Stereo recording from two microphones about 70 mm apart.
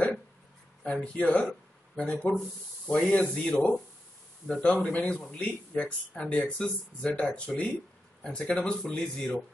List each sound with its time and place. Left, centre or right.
1.0 s speech: centre